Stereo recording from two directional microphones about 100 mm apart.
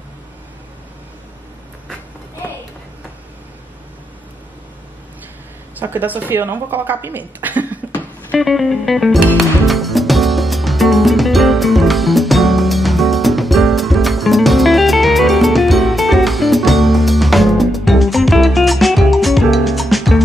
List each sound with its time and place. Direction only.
5.8 s speech: 15° right (ahead or behind)
8.4 s music: centre (ahead or behind)